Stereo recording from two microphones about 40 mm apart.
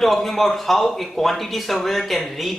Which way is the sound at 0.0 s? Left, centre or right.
Centre.